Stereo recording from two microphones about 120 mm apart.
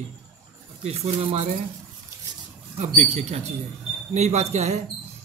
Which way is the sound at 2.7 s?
70° right (ahead or behind).